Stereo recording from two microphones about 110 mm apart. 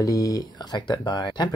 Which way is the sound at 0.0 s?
30° left (ahead or behind).